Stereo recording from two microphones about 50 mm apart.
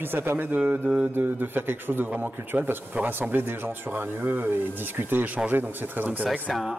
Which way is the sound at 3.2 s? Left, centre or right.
Right.